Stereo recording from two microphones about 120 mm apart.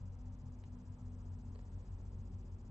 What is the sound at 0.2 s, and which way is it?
Cricket, 25° left (ahead or behind).